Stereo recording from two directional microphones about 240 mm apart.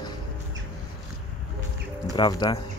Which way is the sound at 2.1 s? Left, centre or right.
Centre.